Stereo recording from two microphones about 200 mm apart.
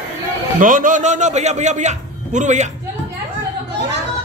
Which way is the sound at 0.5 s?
40° right (ahead or behind).